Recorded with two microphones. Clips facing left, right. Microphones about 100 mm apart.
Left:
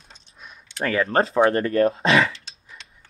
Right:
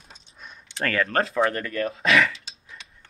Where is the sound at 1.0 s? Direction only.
30° left (ahead or behind).